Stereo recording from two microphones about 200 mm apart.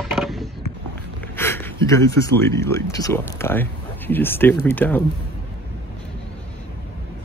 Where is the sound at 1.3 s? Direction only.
10° left (ahead or behind).